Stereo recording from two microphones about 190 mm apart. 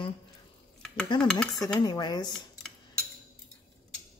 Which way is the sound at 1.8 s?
20° left (ahead or behind).